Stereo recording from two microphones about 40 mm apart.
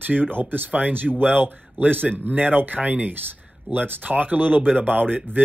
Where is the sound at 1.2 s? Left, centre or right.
Right.